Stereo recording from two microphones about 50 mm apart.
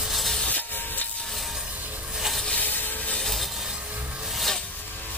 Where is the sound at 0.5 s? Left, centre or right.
Left.